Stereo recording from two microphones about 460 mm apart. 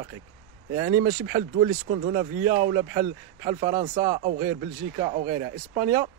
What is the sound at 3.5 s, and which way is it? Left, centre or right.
Speech, centre.